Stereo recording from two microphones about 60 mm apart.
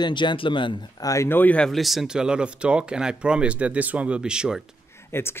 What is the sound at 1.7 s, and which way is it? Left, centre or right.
Speech, centre.